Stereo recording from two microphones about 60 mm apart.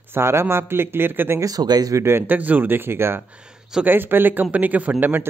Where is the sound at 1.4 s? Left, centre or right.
Right.